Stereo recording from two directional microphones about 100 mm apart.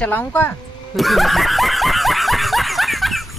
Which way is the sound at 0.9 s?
Centre (ahead or behind).